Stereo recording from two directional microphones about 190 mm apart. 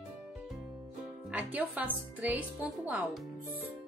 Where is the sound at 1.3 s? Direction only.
10° right (ahead or behind).